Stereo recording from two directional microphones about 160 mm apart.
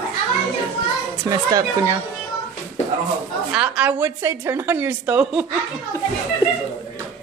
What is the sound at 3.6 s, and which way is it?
A woman's voice, 10° right (ahead or behind).